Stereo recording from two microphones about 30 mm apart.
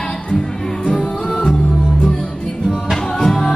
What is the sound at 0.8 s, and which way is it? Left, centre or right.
Music, centre.